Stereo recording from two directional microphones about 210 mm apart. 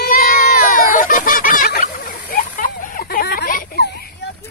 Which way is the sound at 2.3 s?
40° left (ahead or behind).